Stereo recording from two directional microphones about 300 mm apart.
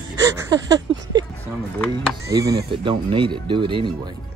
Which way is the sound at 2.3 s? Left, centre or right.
Centre.